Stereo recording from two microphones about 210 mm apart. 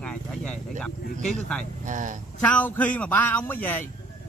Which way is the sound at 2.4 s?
5° left (ahead or behind).